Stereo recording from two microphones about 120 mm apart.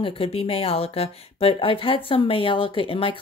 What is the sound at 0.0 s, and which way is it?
Speech, 50° left (ahead or behind).